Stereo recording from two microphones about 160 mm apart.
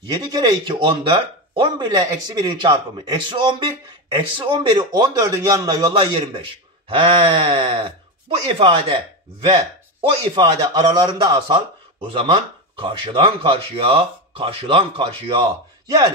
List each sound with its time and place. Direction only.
0.1 s speech: 25° right (ahead or behind)
10.3 s speech: 25° right (ahead or behind)